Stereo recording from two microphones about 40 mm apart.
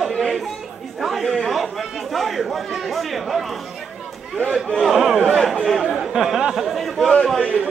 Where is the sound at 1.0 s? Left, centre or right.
Centre.